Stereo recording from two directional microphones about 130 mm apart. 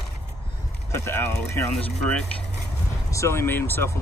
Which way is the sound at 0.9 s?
20° left (ahead or behind).